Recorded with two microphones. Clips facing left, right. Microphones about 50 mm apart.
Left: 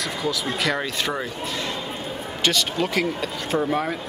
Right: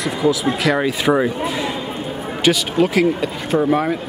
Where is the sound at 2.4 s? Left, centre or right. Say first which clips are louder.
Right 7 dB; centre.